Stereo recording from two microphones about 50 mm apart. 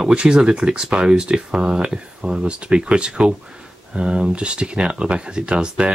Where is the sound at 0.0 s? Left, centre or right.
Centre.